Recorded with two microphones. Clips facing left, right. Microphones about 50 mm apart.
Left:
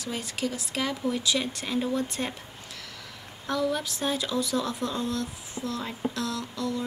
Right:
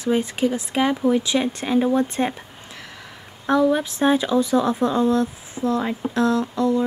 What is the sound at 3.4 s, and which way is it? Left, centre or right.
Speech, right.